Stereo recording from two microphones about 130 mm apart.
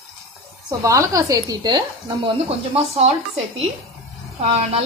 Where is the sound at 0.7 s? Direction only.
25° right (ahead or behind).